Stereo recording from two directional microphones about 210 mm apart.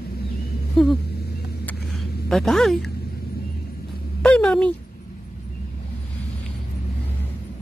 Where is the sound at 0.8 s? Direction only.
5° left (ahead or behind).